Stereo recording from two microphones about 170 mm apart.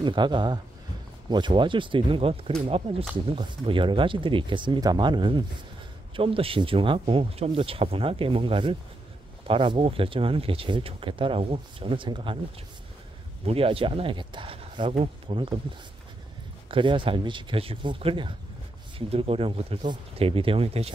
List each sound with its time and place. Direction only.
0.0 s speech: 25° right (ahead or behind)
13.5 s speech: 35° right (ahead or behind)
16.7 s speech: 30° right (ahead or behind)